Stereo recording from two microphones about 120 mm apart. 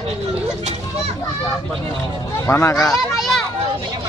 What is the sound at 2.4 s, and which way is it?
Speech, 20° left (ahead or behind).